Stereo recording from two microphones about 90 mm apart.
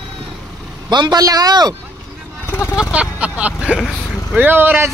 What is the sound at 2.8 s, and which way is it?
Speech, 15° right (ahead or behind).